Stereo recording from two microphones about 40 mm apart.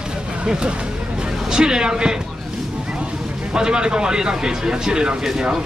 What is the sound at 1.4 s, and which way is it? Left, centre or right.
Speech, centre.